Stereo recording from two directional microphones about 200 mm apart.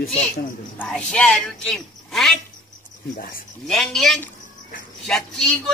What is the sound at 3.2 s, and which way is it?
Speech, 45° left (ahead or behind).